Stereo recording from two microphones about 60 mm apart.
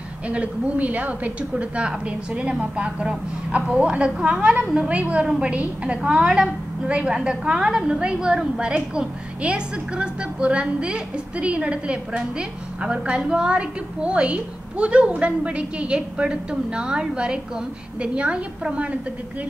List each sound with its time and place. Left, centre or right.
0.3 s a woman's voice: right